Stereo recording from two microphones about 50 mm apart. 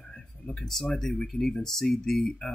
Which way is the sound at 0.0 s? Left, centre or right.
Centre.